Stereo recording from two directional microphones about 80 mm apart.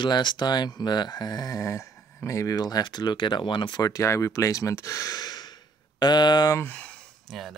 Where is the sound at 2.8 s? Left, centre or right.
Left.